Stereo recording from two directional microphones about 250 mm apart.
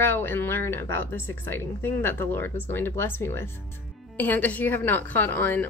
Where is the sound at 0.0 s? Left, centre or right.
Centre.